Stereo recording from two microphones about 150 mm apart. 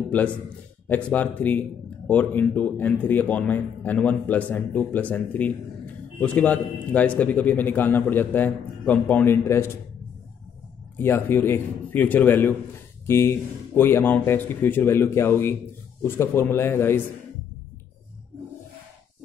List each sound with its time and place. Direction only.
0.8 s speech: 10° left (ahead or behind)
11.0 s speech: 15° left (ahead or behind)